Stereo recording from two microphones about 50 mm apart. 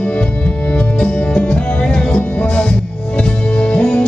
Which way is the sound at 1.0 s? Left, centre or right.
Centre.